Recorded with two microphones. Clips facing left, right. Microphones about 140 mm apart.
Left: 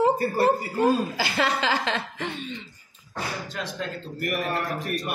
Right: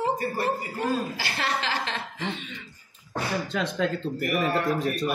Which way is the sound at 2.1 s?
50° left (ahead or behind).